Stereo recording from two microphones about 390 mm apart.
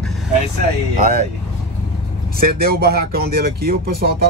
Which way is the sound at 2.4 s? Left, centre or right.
Right.